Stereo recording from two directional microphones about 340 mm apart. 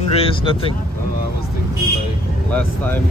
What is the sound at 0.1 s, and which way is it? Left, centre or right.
Speech, centre.